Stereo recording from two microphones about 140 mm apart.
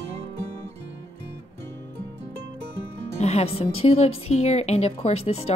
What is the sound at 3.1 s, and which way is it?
Speech, 50° left (ahead or behind).